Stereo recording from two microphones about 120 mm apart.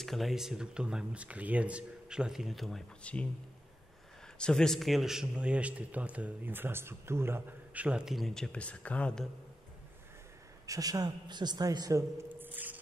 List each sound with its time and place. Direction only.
0.0 s speech: centre (ahead or behind)
4.4 s a man's voice: 5° left (ahead or behind)
10.7 s a man's voice: 30° right (ahead or behind)
12.4 s squish: 15° right (ahead or behind)